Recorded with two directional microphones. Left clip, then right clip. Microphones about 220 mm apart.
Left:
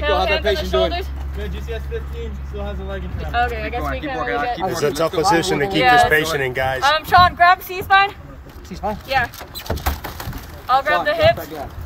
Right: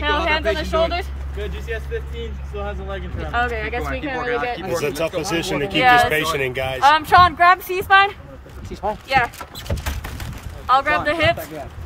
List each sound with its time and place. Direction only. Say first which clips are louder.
0.0 s a sound: left 1 dB; 10° right (ahead or behind)
2.9 s speech: left 2 dB; 15° right (ahead or behind); by 5.8 s 5° left (ahead or behind)
5.8 s speech: even; 15° right (ahead or behind)
6.1 s speech: left 3 dB; centre (ahead or behind)
6.8 s speech: right 1 dB; 20° right (ahead or behind)
10.7 s speech: even; 15° right (ahead or behind)